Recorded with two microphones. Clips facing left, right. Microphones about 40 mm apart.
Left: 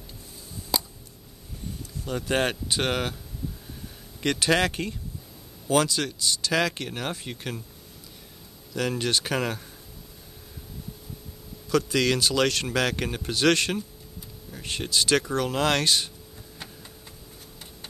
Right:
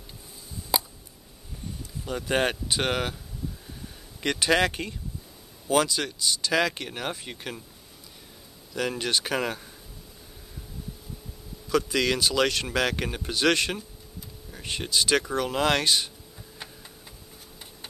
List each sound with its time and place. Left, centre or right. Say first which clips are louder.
0.7 s a sound: right 1 dB; centre
2.0 s speech: even; centre
4.2 s speech: even; centre
8.7 s speech: left 1 dB; centre
11.7 s speech: left 1 dB; centre